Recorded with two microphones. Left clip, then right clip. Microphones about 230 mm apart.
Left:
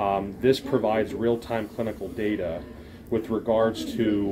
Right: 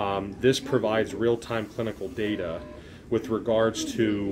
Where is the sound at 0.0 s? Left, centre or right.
Right.